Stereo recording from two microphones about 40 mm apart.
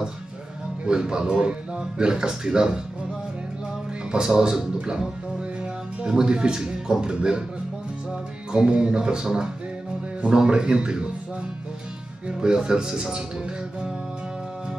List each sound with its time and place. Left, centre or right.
0.8 s speech: centre
4.3 s speech: centre
12.3 s speech: right